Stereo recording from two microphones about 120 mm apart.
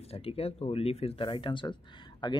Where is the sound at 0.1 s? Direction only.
55° left (ahead or behind).